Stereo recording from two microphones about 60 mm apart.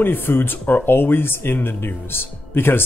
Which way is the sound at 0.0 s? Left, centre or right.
Left.